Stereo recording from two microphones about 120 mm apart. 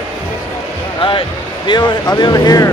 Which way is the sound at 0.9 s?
45° left (ahead or behind).